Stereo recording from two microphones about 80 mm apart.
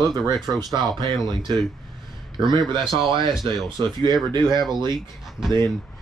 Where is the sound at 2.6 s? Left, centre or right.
Right.